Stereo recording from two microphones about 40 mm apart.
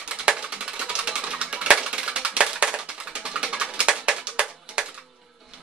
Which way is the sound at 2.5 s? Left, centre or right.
Right.